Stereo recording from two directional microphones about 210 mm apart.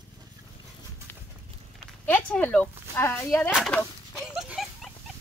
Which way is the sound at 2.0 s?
5° left (ahead or behind).